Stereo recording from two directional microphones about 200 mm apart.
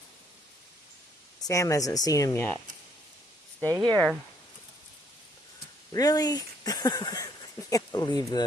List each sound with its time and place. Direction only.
1.4 s speech: 15° left (ahead or behind)
3.6 s speech: 15° right (ahead or behind)
5.9 s speech: 20° left (ahead or behind)